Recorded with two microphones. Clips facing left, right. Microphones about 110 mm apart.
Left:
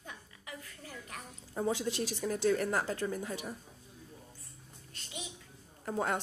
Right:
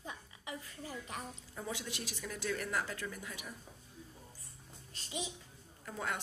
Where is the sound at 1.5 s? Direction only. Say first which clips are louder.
Left 10 dB; 35° left (ahead or behind).